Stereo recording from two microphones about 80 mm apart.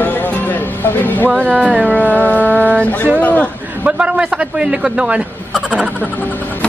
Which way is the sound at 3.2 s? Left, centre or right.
Centre.